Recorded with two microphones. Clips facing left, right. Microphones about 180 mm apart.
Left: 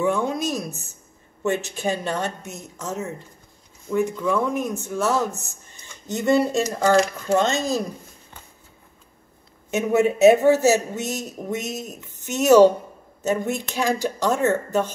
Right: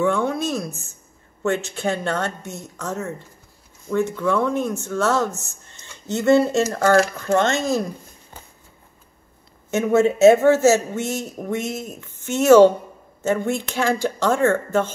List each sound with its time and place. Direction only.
0.0 s speech: 15° left (ahead or behind)
9.7 s speech: 15° left (ahead or behind)